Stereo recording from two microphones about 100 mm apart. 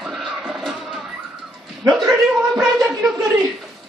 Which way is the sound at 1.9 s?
Centre (ahead or behind).